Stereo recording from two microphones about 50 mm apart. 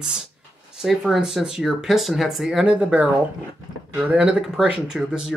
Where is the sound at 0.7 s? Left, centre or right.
Centre.